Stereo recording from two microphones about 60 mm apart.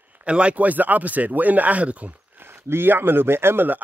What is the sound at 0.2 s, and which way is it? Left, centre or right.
Speech, centre.